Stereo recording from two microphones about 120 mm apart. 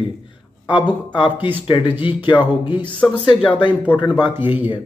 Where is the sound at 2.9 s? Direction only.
10° left (ahead or behind).